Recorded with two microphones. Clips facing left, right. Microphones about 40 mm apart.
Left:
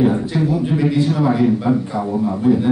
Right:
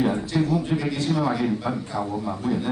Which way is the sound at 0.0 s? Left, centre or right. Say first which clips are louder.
Left 6 dB; centre.